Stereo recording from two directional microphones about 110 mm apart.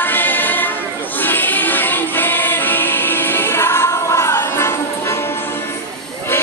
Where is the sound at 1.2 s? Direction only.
20° left (ahead or behind).